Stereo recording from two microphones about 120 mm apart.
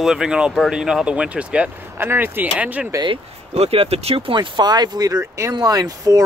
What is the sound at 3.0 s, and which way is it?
Speech, 50° right (ahead or behind).